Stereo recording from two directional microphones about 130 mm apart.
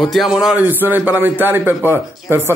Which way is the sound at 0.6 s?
15° right (ahead or behind).